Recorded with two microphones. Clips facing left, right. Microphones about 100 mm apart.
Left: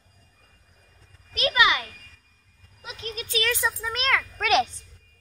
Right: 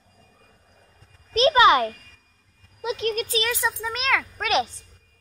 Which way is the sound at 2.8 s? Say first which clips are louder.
Right 11 dB; 85° right.